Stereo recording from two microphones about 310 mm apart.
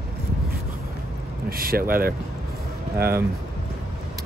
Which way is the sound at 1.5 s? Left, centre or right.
Right.